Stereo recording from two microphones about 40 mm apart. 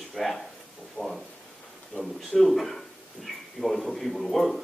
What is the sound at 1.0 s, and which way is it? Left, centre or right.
Speech, left.